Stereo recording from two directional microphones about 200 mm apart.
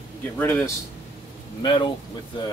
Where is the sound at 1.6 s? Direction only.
20° left (ahead or behind).